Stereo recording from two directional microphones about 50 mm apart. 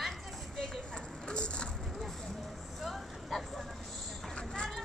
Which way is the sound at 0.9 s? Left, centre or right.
Centre.